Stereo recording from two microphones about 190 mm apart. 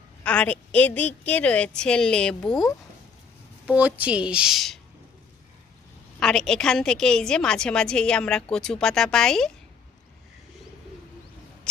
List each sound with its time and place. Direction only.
0.2 s a woman's voice: 5° left (ahead or behind)
3.6 s a woman's voice: 5° right (ahead or behind)
6.1 s a woman's voice: 5° left (ahead or behind)